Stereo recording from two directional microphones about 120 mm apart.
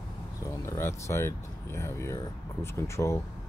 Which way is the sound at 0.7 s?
20° left (ahead or behind).